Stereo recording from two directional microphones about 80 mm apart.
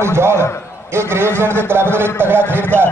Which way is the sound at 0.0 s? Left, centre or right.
Right.